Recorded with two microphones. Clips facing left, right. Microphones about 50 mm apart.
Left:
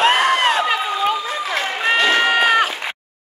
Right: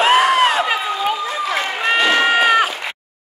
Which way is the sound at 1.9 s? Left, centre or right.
Centre.